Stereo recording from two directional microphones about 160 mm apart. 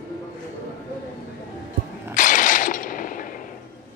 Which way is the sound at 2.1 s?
55° left (ahead or behind).